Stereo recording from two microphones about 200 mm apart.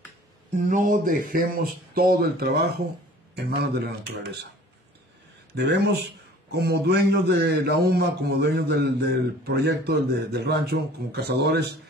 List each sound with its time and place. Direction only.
0.7 s a man's voice: 40° right (ahead or behind); by 4.5 s 55° right (ahead or behind)
5.5 s a man's voice: 55° right (ahead or behind)